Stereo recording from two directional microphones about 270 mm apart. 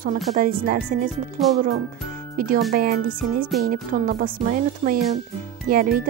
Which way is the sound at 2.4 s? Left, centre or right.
Right.